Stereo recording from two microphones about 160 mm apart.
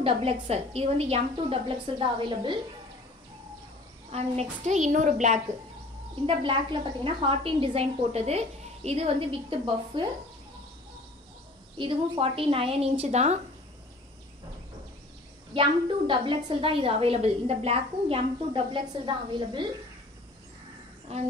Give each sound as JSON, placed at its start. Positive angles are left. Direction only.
{"t": 0.0, "sound": "a woman's voice", "side_deg": -40}
{"t": 4.1, "sound": "a woman's voice", "side_deg": -40}
{"t": 6.2, "sound": "a woman's voice", "side_deg": -35}
{"t": 11.8, "sound": "a woman's voice", "side_deg": -35}
{"t": 15.5, "sound": "a woman's voice", "side_deg": -30}